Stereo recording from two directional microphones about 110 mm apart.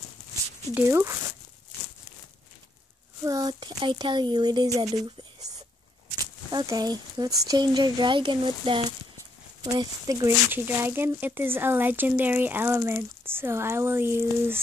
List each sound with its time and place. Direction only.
0.7 s speech: 25° right (ahead or behind)
3.3 s speech: 35° right (ahead or behind)
6.5 s speech: 35° right (ahead or behind); by 8.8 s 50° right (ahead or behind)
9.6 s speech: 35° right (ahead or behind)
10.5 s speech: 20° right (ahead or behind)